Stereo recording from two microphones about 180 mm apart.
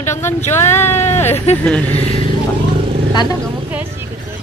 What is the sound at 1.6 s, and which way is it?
Speech, 10° left (ahead or behind).